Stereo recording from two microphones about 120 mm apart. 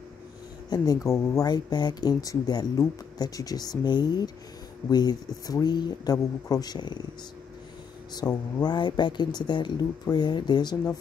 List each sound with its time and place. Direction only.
0.7 s speech: 35° left (ahead or behind)
8.1 s speech: 35° left (ahead or behind)